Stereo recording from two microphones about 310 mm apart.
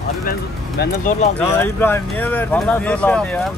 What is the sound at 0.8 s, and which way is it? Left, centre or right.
Speech, left.